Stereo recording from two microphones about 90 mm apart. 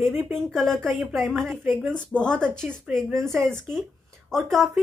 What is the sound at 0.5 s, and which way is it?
Speech, 5° left (ahead or behind).